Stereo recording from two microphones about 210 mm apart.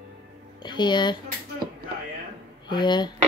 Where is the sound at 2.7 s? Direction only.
20° left (ahead or behind).